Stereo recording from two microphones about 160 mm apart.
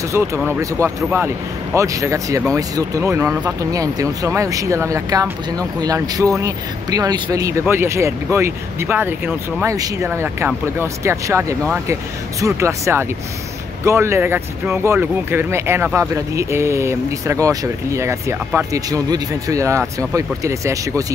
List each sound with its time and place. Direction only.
0.8 s speech: 15° right (ahead or behind)